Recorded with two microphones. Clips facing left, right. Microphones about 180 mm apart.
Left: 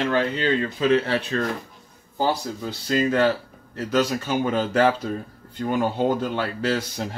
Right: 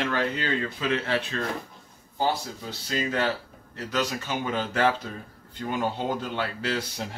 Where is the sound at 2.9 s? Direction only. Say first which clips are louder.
Left 7 dB; 45° left (ahead or behind).